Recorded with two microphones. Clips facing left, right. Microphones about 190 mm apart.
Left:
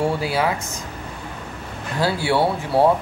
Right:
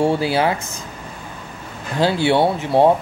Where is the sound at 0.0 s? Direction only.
25° right (ahead or behind).